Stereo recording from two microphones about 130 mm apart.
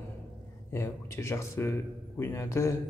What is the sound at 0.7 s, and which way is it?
A man's voice, 20° left (ahead or behind).